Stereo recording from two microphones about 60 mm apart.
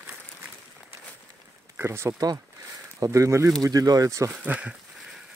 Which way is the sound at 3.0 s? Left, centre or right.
Right.